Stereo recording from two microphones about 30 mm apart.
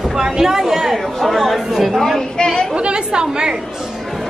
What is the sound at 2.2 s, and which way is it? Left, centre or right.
Speech, left.